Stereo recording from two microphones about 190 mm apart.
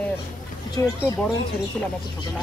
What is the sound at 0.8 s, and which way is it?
Speech, 15° left (ahead or behind).